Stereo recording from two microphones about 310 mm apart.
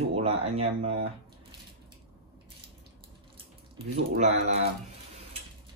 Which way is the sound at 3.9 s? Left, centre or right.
Right.